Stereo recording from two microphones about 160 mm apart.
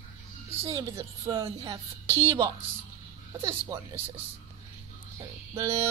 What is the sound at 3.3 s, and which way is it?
Speech, 20° right (ahead or behind).